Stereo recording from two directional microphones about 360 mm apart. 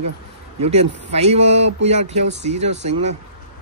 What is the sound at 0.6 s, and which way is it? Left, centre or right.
Speech, centre.